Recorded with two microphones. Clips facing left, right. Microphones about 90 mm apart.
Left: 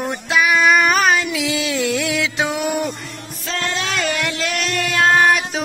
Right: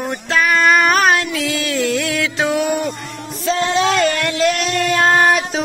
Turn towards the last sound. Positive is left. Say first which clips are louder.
# right 1 dB
turn(degrees=-10)  # may be behind; listen again after turning